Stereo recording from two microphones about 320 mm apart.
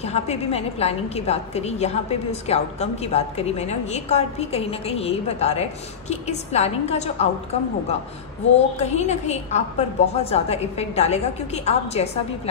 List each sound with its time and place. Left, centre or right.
0.0 s a woman's voice: centre
8.5 s a woman's voice: left